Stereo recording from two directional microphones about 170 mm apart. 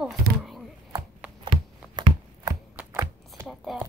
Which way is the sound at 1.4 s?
25° right (ahead or behind).